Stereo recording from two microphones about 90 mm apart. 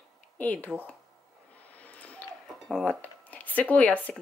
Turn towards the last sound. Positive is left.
turn(degrees=15)  # may be behind; listen again after turning